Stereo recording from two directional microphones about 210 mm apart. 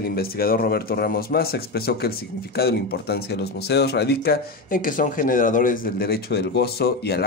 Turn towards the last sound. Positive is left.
turn(degrees=50)  # may be behind; listen again after turning